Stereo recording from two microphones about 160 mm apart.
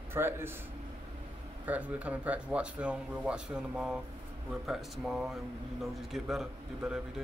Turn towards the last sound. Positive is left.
turn(degrees=-5)  # may be behind; listen again after turning